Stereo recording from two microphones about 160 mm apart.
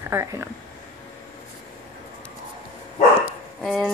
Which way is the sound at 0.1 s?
15° right (ahead or behind).